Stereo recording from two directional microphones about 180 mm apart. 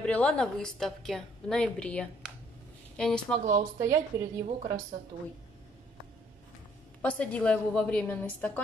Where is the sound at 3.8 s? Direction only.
15° right (ahead or behind).